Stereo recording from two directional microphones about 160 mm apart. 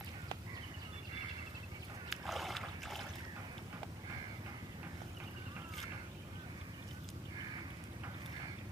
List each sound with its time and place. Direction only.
2.0 s boat: centre (ahead or behind)